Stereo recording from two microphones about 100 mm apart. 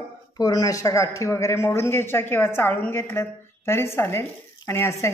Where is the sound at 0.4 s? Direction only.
35° left (ahead or behind).